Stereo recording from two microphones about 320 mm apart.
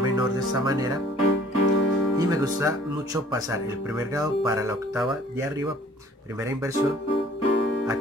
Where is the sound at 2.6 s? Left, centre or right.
Centre.